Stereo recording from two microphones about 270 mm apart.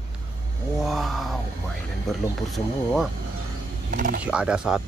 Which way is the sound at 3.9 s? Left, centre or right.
Right.